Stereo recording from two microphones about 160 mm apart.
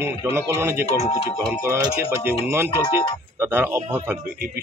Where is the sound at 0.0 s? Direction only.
15° right (ahead or behind).